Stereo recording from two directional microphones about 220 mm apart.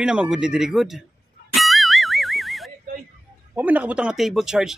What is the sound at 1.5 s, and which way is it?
Music, centre (ahead or behind).